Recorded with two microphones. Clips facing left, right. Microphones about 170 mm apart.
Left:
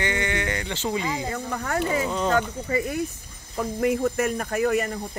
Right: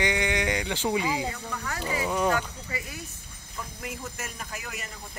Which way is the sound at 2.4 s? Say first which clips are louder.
Left 10 dB; 50° left (ahead or behind).